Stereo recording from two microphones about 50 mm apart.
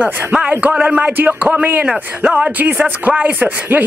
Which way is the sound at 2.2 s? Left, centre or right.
Right.